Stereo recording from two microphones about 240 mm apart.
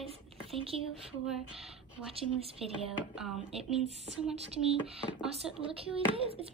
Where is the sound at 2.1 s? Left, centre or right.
Right.